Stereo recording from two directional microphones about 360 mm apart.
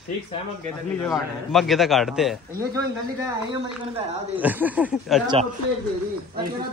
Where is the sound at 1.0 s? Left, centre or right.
Centre.